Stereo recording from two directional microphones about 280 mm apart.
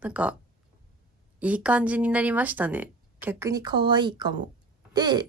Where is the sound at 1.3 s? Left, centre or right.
Centre.